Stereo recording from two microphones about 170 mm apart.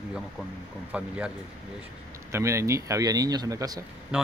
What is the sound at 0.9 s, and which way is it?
Speech, 5° right (ahead or behind).